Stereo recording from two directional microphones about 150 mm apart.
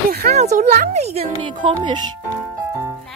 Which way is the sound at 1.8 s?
30° right (ahead or behind).